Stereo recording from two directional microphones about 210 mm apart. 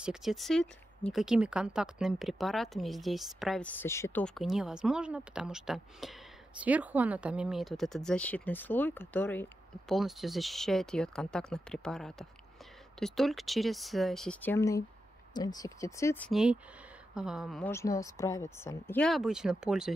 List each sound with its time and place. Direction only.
0.0 s speech: centre (ahead or behind)
16.3 s speech: centre (ahead or behind)
17.6 s speech: 15° left (ahead or behind); by 19.9 s 5° right (ahead or behind)